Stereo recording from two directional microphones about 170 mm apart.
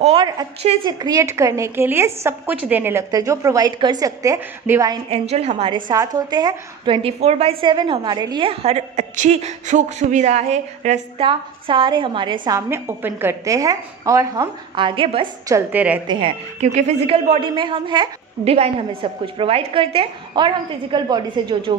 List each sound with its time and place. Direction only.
0.6 s a woman's voice: 35° right (ahead or behind)
1.0 s a woman's voice: 20° right (ahead or behind)
5.1 s a woman's voice: 40° right (ahead or behind)
5.9 s a woman's voice: 25° right (ahead or behind)
7.6 s a woman's voice: 25° right (ahead or behind); by 11.2 s 40° right (ahead or behind)
11.2 s a woman's voice: 30° right (ahead or behind)
15.5 s a woman's voice: 10° right (ahead or behind)
16.1 s a woman's voice: 30° right (ahead or behind)
16.6 s a woman's voice: 45° right (ahead or behind)